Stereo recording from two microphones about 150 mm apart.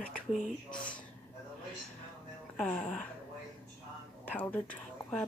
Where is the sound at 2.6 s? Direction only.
5° left (ahead or behind).